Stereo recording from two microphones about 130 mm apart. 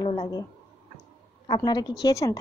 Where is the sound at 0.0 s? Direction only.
30° left (ahead or behind).